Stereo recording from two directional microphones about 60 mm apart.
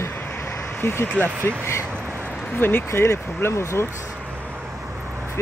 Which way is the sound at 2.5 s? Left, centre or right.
Left.